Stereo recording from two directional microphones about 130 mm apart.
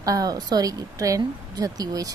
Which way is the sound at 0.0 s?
30° right (ahead or behind).